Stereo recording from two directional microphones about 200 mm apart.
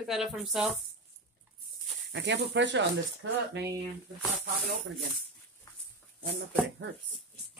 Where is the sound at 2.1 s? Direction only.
60° right (ahead or behind).